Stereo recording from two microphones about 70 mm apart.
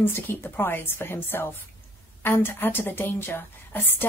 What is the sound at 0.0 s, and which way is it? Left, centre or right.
A woman's voice, left.